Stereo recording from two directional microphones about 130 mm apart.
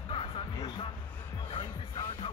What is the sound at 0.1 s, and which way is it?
Music, 40° left (ahead or behind).